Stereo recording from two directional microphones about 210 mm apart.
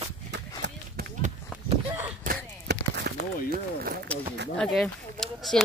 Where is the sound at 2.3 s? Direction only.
50° right (ahead or behind).